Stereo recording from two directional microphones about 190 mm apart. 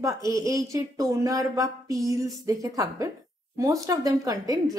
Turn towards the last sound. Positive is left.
turn(degrees=-20)  # may be behind; listen again after turning